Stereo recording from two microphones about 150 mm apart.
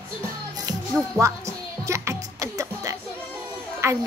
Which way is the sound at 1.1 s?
20° right (ahead or behind).